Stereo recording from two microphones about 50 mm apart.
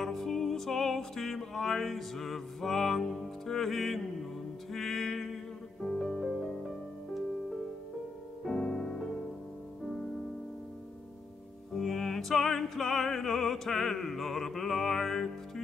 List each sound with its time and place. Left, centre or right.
0.0 s music: centre
8.5 s music: left
11.7 s music: centre